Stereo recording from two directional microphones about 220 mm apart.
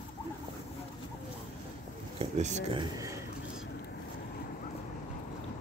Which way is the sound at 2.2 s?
30° right (ahead or behind).